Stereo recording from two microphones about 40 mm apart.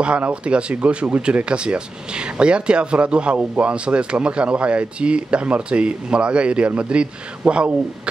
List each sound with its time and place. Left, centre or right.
0.0 s speech: right